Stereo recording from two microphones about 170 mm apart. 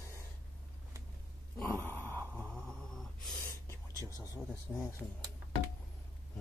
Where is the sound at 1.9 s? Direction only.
10° left (ahead or behind).